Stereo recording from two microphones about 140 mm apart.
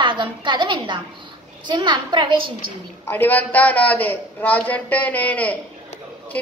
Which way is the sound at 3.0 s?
15° left (ahead or behind).